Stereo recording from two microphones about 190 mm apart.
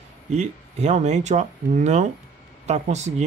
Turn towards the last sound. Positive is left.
turn(degrees=-35)  # may be behind; listen again after turning